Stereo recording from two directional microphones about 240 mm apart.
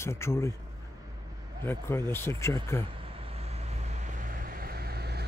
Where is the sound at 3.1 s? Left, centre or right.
Right.